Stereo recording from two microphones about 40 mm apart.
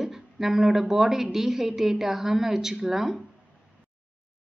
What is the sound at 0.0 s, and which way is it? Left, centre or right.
A woman's voice, centre.